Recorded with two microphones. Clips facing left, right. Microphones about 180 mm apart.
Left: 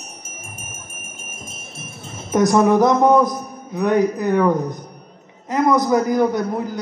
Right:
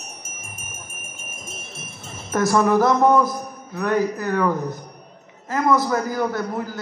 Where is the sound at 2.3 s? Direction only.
20° left (ahead or behind).